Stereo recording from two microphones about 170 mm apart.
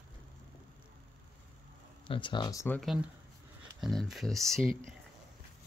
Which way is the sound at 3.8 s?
Centre (ahead or behind).